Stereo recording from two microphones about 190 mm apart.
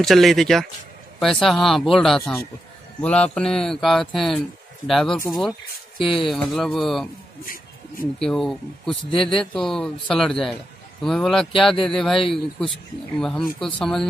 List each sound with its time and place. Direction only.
0.0 s speech: centre (ahead or behind)
8.2 s speech: centre (ahead or behind)